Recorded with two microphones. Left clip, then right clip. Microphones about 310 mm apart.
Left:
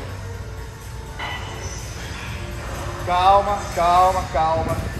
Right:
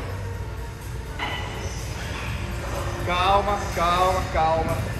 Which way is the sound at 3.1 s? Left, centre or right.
Left.